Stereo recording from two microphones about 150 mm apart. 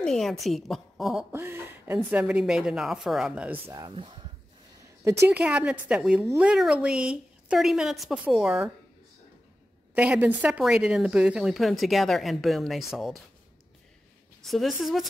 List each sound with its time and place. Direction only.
0.0 s speech: centre (ahead or behind)
1.3 s a sound: 15° right (ahead or behind)
2.0 s speech: 5° right (ahead or behind)
3.9 s speech: 35° right (ahead or behind)
5.3 s a woman's voice: 10° right (ahead or behind)
9.9 s speech: 10° right (ahead or behind)
14.4 s speech: centre (ahead or behind)